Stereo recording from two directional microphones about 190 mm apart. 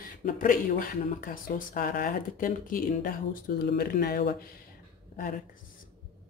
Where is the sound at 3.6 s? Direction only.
55° left (ahead or behind).